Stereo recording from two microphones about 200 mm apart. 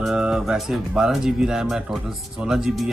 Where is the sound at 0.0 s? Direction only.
5° right (ahead or behind).